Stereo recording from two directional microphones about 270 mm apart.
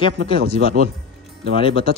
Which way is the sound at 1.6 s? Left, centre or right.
Centre.